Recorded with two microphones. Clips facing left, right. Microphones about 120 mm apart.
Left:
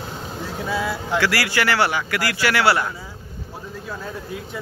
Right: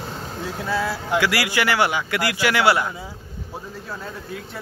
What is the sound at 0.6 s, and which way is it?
Speech, centre (ahead or behind).